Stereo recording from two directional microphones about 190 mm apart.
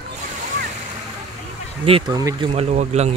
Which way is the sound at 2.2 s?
20° right (ahead or behind).